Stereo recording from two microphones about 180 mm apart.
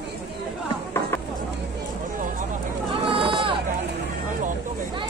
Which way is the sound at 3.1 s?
30° right (ahead or behind).